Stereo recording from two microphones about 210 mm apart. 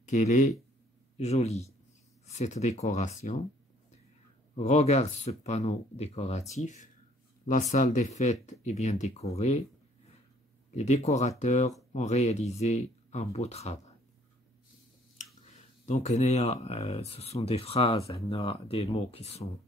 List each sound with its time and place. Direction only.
0.0 s speech: 35° left (ahead or behind)
4.6 s speech: 30° left (ahead or behind)
10.7 s speech: 30° left (ahead or behind)
15.1 s a sound: 30° left (ahead or behind)
16.6 s speech: 30° left (ahead or behind)